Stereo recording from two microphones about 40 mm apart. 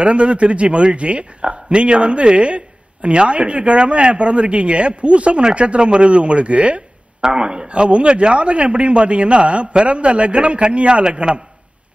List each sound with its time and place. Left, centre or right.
0.0 s a man's voice: right